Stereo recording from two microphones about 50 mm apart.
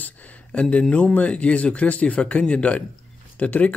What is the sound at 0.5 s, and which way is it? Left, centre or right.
Speech, left.